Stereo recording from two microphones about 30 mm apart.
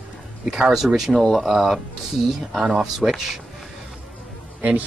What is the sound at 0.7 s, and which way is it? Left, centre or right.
Speech, centre.